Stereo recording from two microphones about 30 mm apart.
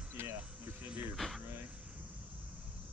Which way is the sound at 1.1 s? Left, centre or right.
Centre.